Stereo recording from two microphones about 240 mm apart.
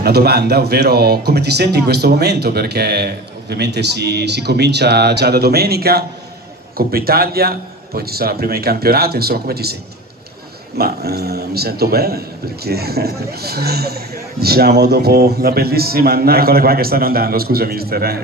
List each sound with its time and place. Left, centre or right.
0.0 s a man's voice: right
10.8 s a man's voice: right